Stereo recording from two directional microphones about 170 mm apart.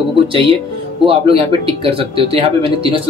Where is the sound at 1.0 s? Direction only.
35° right (ahead or behind).